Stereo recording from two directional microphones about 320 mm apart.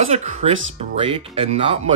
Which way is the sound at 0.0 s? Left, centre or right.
Right.